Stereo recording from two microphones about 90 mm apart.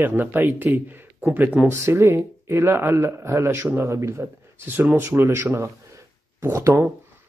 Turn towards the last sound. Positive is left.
turn(degrees=-35)  # may be behind; listen again after turning